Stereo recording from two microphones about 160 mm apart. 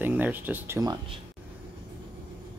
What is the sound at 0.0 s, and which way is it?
Speech, 10° right (ahead or behind).